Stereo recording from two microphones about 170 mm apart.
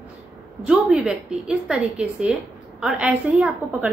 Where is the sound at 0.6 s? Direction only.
5° right (ahead or behind).